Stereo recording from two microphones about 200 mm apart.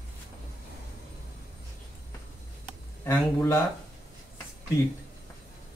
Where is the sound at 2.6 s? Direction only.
10° left (ahead or behind).